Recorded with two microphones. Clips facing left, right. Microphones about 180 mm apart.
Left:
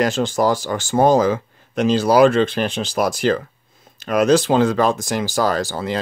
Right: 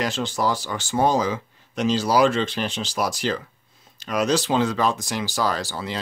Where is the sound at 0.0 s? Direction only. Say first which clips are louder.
Left 6 dB; 45° left (ahead or behind).